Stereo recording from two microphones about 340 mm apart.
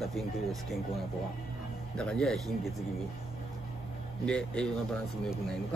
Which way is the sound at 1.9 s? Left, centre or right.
Centre.